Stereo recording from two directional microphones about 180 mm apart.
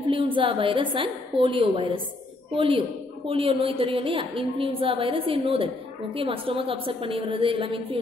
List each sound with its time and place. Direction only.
0.1 s a woman's voice: 30° right (ahead or behind)